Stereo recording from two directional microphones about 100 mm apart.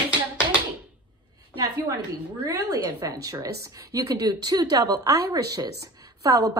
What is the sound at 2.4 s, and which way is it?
A woman's voice, 30° right (ahead or behind).